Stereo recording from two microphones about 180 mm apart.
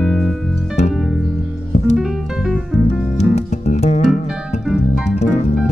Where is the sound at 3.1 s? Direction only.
40° left (ahead or behind).